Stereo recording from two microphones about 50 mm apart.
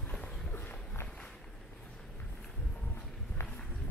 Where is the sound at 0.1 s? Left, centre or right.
Left.